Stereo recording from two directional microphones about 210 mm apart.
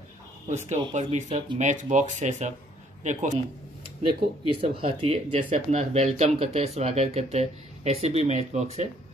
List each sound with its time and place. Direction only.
0.5 s a man's voice: 35° right (ahead or behind)
4.5 s speech: 25° right (ahead or behind)